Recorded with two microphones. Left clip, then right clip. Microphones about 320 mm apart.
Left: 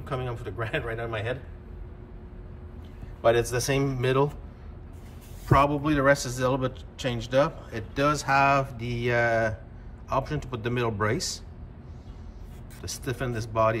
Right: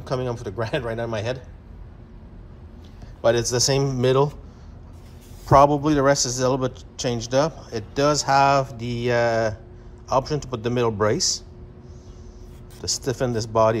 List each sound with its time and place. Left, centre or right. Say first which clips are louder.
0.1 s a man's voice: right 7 dB; centre
3.2 s a man's voice: right 3 dB; centre
5.5 s a man's voice: right 7 dB; centre
12.8 s a man's voice: right 8 dB; centre